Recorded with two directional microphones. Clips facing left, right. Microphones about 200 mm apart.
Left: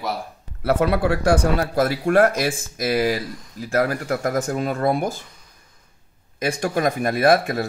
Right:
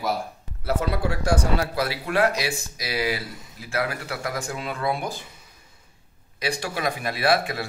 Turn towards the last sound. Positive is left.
turn(degrees=45)  # may be behind; listen again after turning